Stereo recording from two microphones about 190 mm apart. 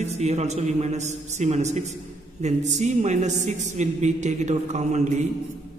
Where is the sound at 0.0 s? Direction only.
35° right (ahead or behind).